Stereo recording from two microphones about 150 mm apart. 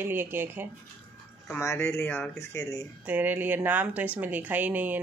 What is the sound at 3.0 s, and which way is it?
A woman's voice, 10° right (ahead or behind).